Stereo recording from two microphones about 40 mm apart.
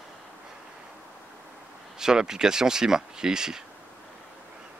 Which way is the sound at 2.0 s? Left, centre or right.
Centre.